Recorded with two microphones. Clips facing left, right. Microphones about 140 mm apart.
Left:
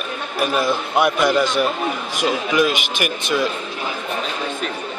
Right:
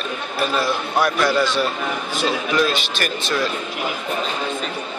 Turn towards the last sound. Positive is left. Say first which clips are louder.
# left 2 dB
turn(degrees=15)  # may be behind; listen again after turning